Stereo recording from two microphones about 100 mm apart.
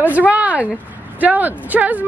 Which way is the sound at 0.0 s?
15° right (ahead or behind).